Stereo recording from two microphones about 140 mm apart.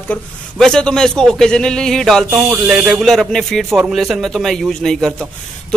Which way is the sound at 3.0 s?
Centre (ahead or behind).